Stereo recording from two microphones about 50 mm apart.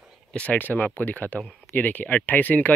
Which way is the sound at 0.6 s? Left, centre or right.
Left.